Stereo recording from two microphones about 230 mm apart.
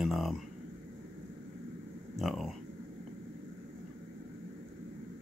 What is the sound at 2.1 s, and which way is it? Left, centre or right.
Speech, centre.